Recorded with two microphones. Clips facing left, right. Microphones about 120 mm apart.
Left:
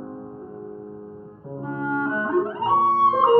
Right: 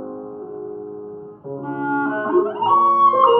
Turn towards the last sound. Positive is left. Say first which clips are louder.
# right 3 dB
turn(degrees=-20)  # may be behind; listen again after turning